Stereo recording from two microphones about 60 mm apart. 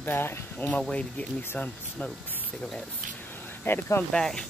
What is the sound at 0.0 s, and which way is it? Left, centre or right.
Speech, left.